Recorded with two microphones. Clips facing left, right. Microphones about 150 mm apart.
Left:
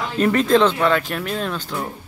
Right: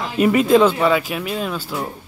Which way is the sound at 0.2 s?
10° right (ahead or behind).